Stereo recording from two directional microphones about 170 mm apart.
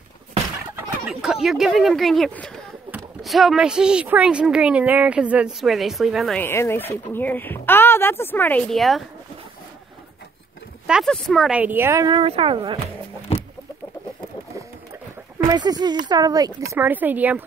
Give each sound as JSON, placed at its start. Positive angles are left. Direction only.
{"t": 1.0, "sound": "speech", "side_deg": 0}
{"t": 6.4, "sound": "speech", "side_deg": 15}
{"t": 10.9, "sound": "speech", "side_deg": 0}
{"t": 12.2, "sound": "speech", "side_deg": -35}
{"t": 15.3, "sound": "speech", "side_deg": -20}
{"t": 16.7, "sound": "speech", "side_deg": -10}